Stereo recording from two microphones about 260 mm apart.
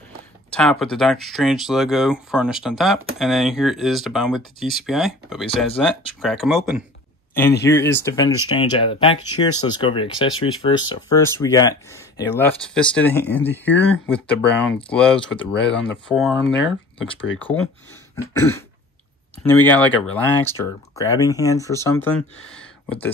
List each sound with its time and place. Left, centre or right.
0.5 s speech: centre
7.7 s speech: centre
18.1 s speech: centre